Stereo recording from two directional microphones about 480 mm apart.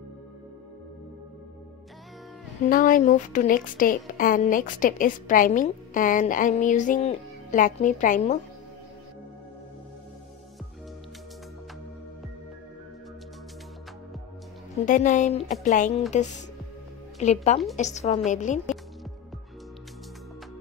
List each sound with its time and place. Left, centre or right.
2.7 s speech: centre
14.9 s speech: centre